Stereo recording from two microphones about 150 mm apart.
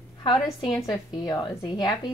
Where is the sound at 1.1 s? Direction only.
25° left (ahead or behind).